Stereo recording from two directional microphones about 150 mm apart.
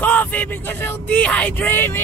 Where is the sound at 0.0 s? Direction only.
10° left (ahead or behind).